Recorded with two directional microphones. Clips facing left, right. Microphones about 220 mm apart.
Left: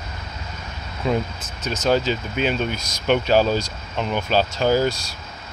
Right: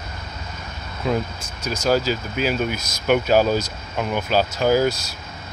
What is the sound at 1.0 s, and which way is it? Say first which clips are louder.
Speech: even; centre (ahead or behind).